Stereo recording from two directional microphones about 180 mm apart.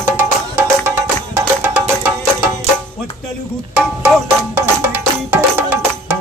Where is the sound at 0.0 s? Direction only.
10° right (ahead or behind).